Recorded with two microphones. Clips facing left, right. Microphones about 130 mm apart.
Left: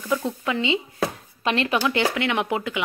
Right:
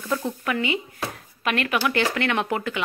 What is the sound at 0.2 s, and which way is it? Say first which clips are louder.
Speech: left 1 dB; 20° left (ahead or behind).